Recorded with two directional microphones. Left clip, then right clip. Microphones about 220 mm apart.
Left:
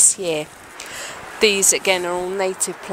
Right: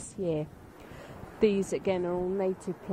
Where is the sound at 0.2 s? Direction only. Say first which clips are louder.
Left 9 dB; 40° left (ahead or behind).